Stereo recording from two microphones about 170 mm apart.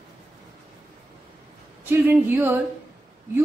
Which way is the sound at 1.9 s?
10° right (ahead or behind).